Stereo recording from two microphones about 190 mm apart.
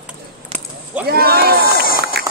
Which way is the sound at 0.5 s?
30° right (ahead or behind).